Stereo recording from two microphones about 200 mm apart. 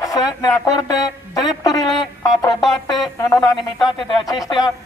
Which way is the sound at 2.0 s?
20° left (ahead or behind).